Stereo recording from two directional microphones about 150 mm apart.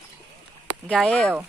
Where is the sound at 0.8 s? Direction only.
10° left (ahead or behind).